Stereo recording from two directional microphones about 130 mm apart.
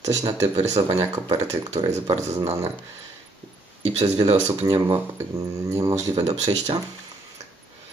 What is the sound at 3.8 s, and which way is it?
Speech, 45° right (ahead or behind).